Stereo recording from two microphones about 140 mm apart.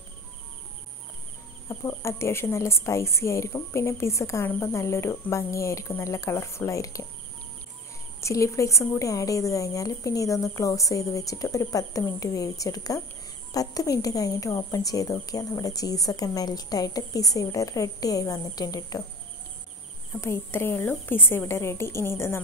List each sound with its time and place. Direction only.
1.7 s speech: 20° left (ahead or behind)
8.2 s speech: 20° left (ahead or behind)
20.2 s a woman's voice: 20° left (ahead or behind)